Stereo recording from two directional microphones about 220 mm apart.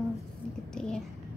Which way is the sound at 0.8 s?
5° left (ahead or behind).